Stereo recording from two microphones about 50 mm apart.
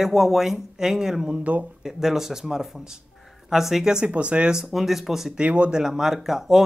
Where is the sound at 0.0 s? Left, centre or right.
Centre.